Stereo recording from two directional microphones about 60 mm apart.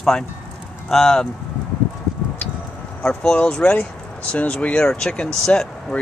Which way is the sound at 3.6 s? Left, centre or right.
Left.